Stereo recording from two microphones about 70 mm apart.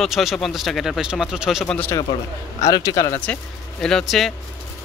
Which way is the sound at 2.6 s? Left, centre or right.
Left.